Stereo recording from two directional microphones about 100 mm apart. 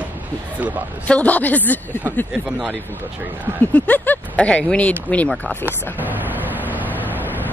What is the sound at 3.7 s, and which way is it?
Speech, 15° left (ahead or behind).